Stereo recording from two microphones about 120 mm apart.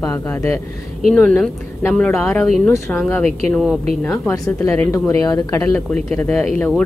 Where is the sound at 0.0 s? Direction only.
20° left (ahead or behind).